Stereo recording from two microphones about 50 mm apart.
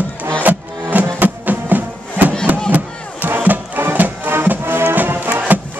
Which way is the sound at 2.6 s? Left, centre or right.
Right.